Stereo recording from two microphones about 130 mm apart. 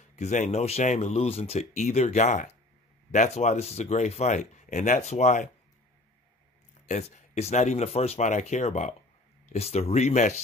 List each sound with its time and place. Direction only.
0.1 s speech: 65° left (ahead or behind)
6.9 s speech: 60° left (ahead or behind)